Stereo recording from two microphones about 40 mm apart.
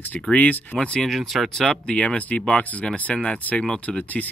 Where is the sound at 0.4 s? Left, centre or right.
Left.